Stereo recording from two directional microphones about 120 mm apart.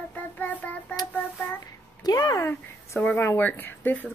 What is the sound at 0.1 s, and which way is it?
Child singing, 15° left (ahead or behind).